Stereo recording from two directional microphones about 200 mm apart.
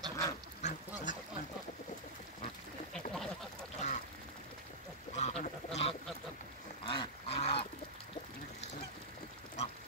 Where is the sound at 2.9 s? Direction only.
Centre (ahead or behind).